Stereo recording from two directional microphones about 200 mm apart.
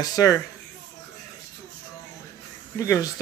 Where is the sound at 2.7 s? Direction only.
15° left (ahead or behind).